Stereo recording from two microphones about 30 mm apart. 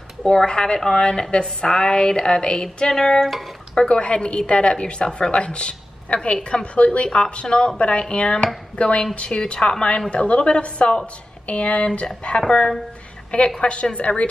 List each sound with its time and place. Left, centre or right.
0.2 s speech: centre
0.5 s a woman's voice: left
3.3 s speech: centre
3.9 s a woman's voice: left
12.4 s a woman's voice: left
13.6 s a woman's voice: left